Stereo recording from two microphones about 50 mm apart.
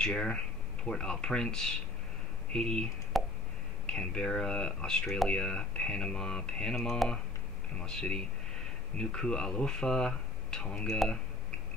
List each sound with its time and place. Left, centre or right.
0.0 s speech: centre
3.1 s a sound: centre
3.8 s speech: centre
6.7 s speech: centre